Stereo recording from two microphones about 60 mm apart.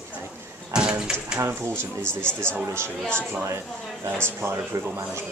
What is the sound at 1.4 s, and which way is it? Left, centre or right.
Speech, right.